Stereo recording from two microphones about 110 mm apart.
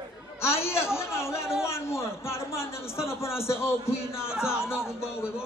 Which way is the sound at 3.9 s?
5° right (ahead or behind).